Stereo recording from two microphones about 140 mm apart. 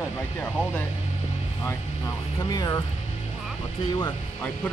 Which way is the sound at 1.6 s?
20° left (ahead or behind).